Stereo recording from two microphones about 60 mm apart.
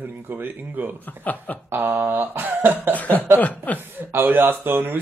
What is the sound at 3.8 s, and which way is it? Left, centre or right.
Speech, right.